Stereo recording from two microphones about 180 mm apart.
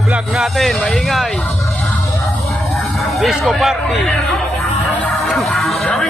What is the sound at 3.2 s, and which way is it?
Speech, centre (ahead or behind).